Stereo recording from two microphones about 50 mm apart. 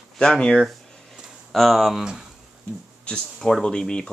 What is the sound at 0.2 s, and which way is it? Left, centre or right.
Speech, centre.